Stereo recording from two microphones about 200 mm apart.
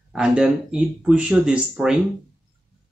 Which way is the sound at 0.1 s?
5° right (ahead or behind).